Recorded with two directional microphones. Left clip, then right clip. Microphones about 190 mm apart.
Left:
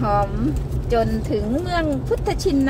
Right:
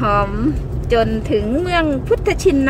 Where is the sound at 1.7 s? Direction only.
35° right (ahead or behind).